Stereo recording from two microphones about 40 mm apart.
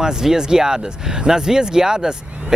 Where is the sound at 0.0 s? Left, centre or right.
Centre.